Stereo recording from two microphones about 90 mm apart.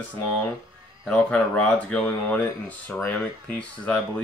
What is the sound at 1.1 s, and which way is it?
Speech, 15° left (ahead or behind).